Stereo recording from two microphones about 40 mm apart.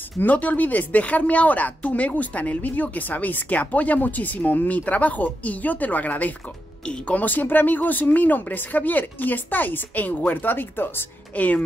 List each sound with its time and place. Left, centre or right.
0.2 s a woman's voice: left
11.3 s speech: left